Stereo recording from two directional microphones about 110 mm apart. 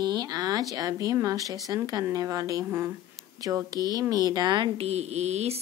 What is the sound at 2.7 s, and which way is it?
Speech, 20° right (ahead or behind).